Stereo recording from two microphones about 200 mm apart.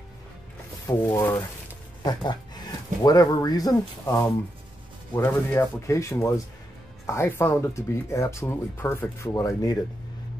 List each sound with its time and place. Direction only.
0.8 s speech: 15° left (ahead or behind)
3.0 s speech: 20° left (ahead or behind)